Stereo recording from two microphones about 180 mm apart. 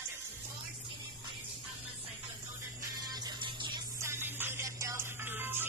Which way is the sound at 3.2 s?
25° right (ahead or behind).